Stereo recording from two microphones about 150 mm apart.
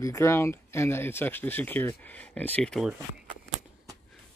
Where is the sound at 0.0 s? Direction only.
20° left (ahead or behind); by 3.0 s centre (ahead or behind).